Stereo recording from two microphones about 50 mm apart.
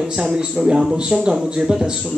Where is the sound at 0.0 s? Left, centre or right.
Centre.